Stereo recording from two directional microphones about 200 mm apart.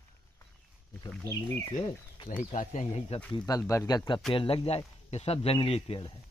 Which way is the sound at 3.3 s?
20° left (ahead or behind).